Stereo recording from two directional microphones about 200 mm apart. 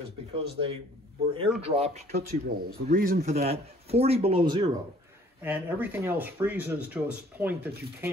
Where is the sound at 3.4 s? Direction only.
30° right (ahead or behind).